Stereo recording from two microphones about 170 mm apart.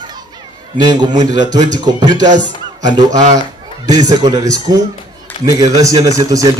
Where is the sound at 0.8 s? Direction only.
25° right (ahead or behind).